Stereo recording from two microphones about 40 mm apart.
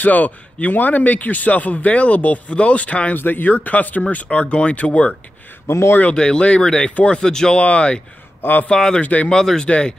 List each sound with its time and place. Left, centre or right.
0.0 s speech: left
3.2 s speech: left
6.1 s speech: left
7.5 s speech: left
8.4 s a man's voice: left
8.6 s speech: centre
9.0 s speech: left
9.3 s speech: centre